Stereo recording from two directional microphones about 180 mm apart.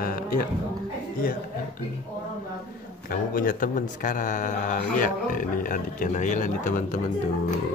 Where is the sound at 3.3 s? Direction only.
50° left (ahead or behind).